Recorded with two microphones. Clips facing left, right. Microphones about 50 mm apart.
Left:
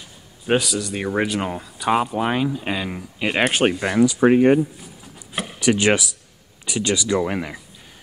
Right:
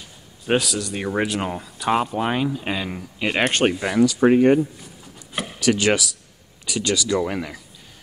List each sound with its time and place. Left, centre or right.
0.5 s speech: centre
5.3 s a sound: centre
5.6 s speech: left